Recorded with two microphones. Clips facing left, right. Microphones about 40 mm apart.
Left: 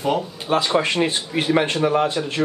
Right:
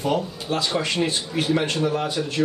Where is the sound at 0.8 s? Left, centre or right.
Left.